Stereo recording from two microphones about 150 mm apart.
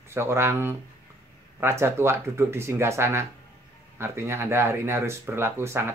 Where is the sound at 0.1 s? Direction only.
15° right (ahead or behind).